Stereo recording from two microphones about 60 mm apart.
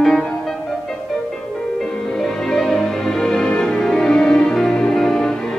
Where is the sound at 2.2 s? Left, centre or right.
Centre.